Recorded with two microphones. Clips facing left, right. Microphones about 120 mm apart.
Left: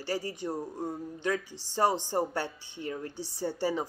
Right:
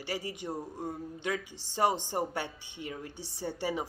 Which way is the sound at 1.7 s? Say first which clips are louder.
Left 1 dB; 15° right (ahead or behind).